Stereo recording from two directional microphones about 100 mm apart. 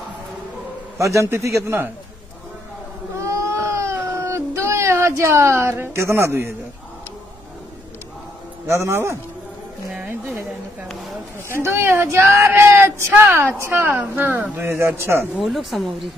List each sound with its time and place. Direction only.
0.9 s speech: 30° right (ahead or behind)
3.2 s baby cry: 30° right (ahead or behind)
8.6 s speech: 25° right (ahead or behind)
11.4 s speech: 25° right (ahead or behind)
15.3 s speech: centre (ahead or behind)